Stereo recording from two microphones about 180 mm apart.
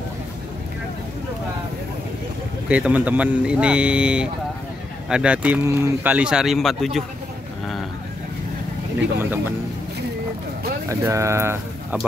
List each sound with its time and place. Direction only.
2.7 s speech: 10° right (ahead or behind)
10.9 s speech: 15° right (ahead or behind)